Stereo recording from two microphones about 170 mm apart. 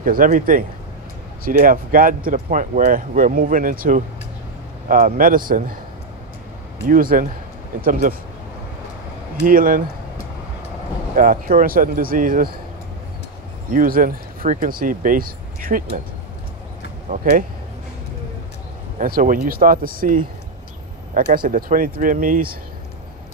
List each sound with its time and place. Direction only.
0.0 s speech: 55° right (ahead or behind)
6.9 s speech: 55° right (ahead or behind)
9.4 s speech: 55° right (ahead or behind)
11.1 s speech: 55° right (ahead or behind)
13.7 s speech: 55° right (ahead or behind)
17.1 s speech: 55° right (ahead or behind)
18.9 s speech: 55° right (ahead or behind)